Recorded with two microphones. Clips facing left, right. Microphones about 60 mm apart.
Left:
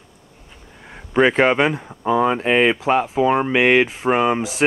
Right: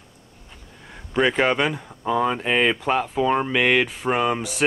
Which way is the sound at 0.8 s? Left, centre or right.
Left.